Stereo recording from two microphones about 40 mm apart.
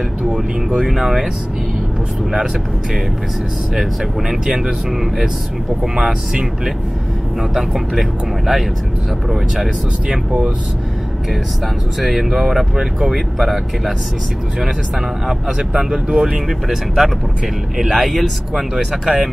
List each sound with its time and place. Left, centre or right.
0.2 s speech: centre
2.3 s speech: centre
7.5 s speech: centre
12.0 s speech: centre
15.2 s speech: centre
16.4 s speech: centre